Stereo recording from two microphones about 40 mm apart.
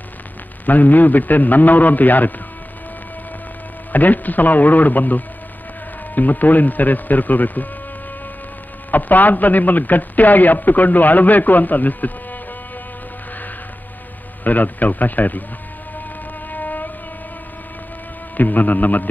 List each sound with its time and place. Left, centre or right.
0.7 s a man's voice: left
3.9 s a man's voice: left
8.9 s a man's voice: left
14.4 s a man's voice: left
16.5 s a sound: left
18.3 s a man's voice: left